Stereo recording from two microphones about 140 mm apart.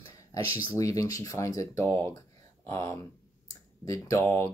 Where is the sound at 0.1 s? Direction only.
25° left (ahead or behind).